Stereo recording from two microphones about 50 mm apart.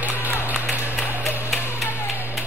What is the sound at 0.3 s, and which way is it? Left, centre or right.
Run, left.